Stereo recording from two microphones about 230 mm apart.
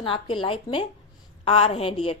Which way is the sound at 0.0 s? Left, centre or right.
Left.